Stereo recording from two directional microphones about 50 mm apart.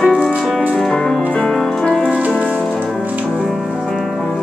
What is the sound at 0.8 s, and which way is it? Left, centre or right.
Music, centre.